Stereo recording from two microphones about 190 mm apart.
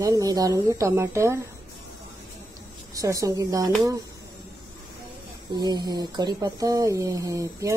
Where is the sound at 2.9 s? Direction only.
15° right (ahead or behind).